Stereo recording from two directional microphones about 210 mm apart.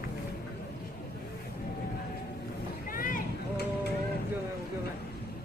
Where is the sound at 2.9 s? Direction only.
40° left (ahead or behind).